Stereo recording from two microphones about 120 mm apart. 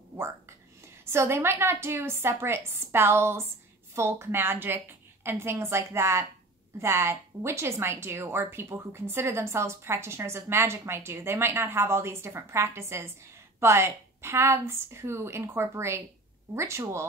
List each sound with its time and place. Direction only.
1.1 s a woman's voice: 20° right (ahead or behind)